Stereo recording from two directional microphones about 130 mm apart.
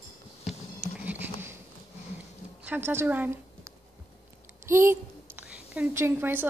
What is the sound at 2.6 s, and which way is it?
A woman's voice, 15° right (ahead or behind).